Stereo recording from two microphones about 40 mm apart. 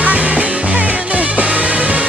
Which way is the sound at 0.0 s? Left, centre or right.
Right.